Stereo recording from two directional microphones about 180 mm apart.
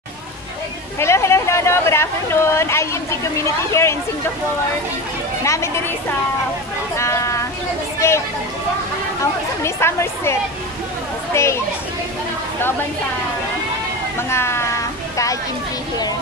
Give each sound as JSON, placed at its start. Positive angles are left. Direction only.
{"t": 0.9, "sound": "speech", "side_deg": 15}
{"t": 5.4, "sound": "speech", "side_deg": 15}
{"t": 7.0, "sound": "a sound", "side_deg": 15}
{"t": 8.0, "sound": "speech", "side_deg": 15}
{"t": 9.2, "sound": "speech", "side_deg": 15}
{"t": 11.3, "sound": "speech", "side_deg": 15}
{"t": 14.3, "sound": "speech", "side_deg": 15}